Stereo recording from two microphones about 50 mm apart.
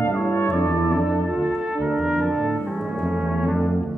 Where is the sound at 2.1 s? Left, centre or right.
Centre.